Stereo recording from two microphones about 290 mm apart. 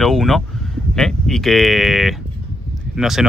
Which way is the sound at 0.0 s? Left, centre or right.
Centre.